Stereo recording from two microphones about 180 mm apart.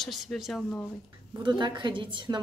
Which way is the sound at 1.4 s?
25° right (ahead or behind).